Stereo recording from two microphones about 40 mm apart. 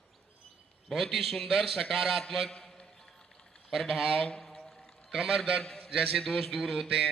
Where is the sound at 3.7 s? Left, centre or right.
Centre.